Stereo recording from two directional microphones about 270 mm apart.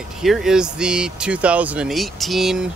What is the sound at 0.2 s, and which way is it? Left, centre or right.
Speech, centre.